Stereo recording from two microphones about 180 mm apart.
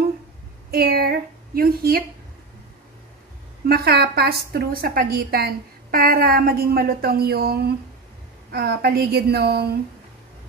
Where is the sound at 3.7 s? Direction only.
60° right (ahead or behind).